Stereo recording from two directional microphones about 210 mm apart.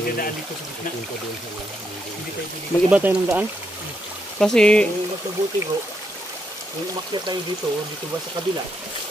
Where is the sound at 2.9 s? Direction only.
10° right (ahead or behind).